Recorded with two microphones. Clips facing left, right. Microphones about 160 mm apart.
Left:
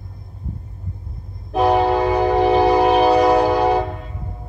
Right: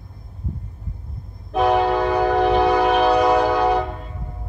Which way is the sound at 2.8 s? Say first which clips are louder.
Left 3 dB; 35° left (ahead or behind).